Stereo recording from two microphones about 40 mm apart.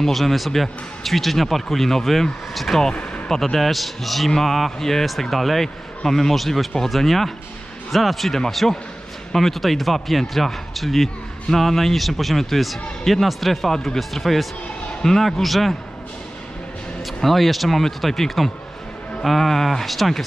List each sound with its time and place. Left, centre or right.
0.0 s speech: centre
2.8 s speech: left
3.3 s speech: centre
17.0 s speech: centre